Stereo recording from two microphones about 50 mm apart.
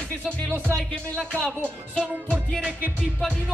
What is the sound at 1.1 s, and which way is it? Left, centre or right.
Speech, centre.